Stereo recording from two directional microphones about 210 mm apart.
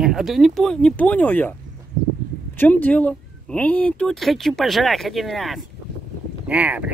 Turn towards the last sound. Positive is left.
turn(degrees=-5)  # may be behind; listen again after turning